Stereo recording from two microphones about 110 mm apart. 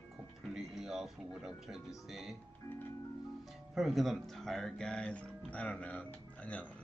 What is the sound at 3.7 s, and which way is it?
Speech, centre (ahead or behind).